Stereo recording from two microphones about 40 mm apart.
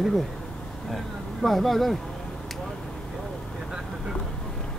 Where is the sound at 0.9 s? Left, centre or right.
Centre.